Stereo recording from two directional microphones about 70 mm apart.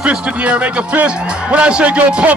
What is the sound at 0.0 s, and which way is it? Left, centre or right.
Speech, right.